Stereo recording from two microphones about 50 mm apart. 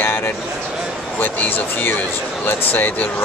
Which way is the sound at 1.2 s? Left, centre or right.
Left.